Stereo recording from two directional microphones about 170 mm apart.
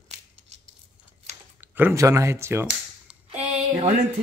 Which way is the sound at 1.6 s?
10° right (ahead or behind).